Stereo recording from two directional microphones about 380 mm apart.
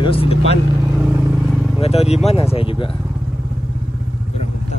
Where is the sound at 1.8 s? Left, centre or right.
Centre.